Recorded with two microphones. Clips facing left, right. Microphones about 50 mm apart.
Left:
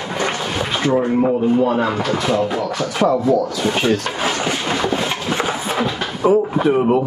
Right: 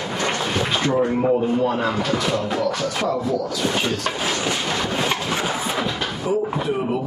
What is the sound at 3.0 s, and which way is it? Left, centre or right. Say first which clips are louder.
Speech: left 10 dB; left.